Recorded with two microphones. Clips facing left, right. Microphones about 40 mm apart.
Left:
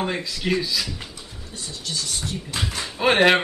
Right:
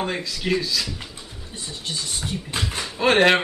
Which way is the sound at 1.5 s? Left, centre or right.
Right.